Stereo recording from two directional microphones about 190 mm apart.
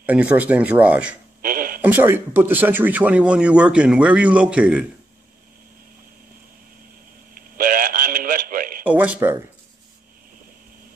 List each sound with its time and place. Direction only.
0.0 s speech: 5° right (ahead or behind)
1.4 s a sound: 50° right (ahead or behind)
1.8 s speech: 10° right (ahead or behind)
7.5 s synthetic singing: 50° right (ahead or behind)
8.8 s speech: 10° right (ahead or behind)